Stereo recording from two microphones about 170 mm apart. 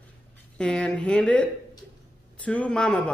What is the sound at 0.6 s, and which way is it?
Speech, 5° left (ahead or behind).